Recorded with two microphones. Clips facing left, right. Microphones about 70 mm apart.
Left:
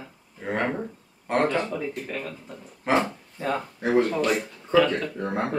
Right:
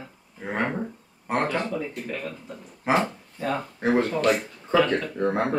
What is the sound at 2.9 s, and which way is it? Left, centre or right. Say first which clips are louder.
Speech: even; centre.